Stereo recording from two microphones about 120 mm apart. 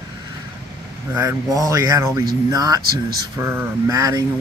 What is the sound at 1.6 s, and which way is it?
Speech, 30° right (ahead or behind).